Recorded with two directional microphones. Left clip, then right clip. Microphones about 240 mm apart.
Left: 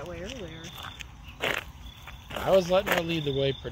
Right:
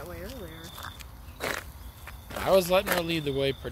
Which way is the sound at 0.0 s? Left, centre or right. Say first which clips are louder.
Left 2 dB; centre.